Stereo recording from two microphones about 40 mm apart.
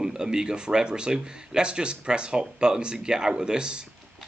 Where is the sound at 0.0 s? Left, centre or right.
Centre.